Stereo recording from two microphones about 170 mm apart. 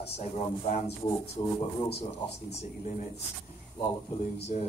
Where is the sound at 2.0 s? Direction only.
40° left (ahead or behind).